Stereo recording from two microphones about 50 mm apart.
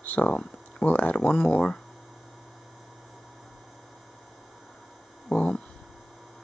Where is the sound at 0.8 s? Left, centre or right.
Left.